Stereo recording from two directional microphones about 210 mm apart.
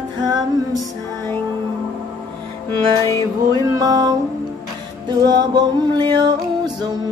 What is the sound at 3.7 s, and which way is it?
Music, 15° right (ahead or behind).